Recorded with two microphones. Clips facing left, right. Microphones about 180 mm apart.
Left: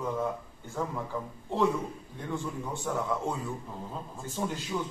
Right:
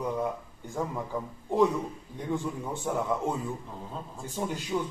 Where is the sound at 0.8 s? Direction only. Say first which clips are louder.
Right 1 dB; 10° right (ahead or behind).